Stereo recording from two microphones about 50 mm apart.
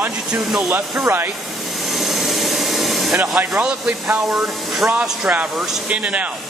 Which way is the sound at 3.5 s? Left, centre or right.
Centre.